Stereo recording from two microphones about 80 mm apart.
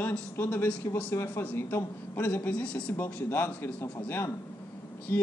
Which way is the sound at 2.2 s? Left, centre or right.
Centre.